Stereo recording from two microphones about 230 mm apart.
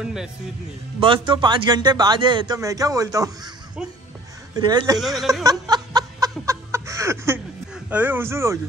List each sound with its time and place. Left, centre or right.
0.0 s speech: centre
1.0 s speech: right
4.6 s speech: centre
5.4 s snicker: centre
7.9 s speech: centre